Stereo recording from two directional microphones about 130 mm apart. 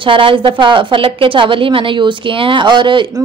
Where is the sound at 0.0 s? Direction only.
40° right (ahead or behind).